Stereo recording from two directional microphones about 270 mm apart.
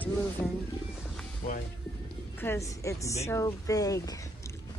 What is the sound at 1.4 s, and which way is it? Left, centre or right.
Music, left.